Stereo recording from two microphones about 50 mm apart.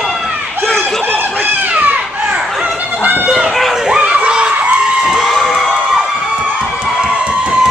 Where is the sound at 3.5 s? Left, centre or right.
Centre.